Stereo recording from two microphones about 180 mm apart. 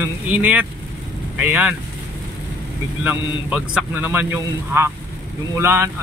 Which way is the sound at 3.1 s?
10° right (ahead or behind).